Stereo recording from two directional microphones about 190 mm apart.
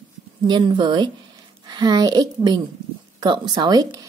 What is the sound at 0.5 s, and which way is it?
A woman's voice, 25° right (ahead or behind).